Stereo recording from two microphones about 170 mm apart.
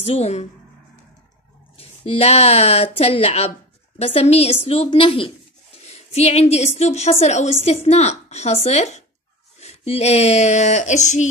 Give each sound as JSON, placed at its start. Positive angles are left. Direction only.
{"t": 0.0, "sound": "a woman's voice", "side_deg": 40}
{"t": 1.8, "sound": "a woman's voice", "side_deg": 35}